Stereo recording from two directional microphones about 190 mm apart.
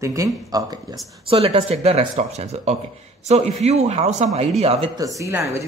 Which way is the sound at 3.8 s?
35° right (ahead or behind).